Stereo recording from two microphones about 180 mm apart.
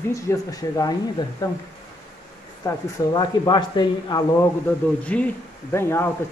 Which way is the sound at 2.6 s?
25° left (ahead or behind).